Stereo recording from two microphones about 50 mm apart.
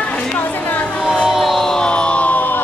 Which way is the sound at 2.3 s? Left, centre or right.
Left.